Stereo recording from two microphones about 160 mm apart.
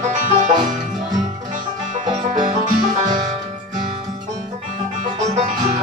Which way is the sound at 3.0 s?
25° right (ahead or behind).